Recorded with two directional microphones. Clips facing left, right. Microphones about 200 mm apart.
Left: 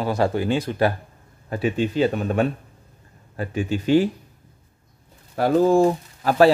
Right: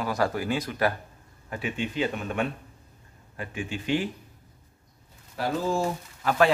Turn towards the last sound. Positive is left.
turn(degrees=35)  # may be behind; listen again after turning